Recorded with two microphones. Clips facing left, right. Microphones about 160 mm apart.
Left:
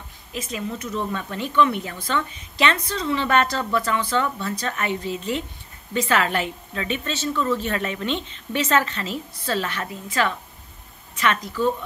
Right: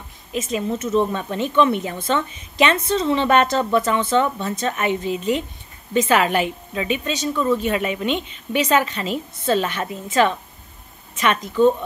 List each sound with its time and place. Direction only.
0.3 s a woman's voice: 20° right (ahead or behind)